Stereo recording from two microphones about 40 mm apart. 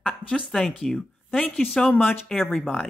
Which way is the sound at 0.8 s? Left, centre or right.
Centre.